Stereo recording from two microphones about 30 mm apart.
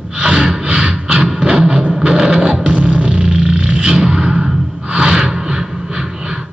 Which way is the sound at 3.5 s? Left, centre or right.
Right.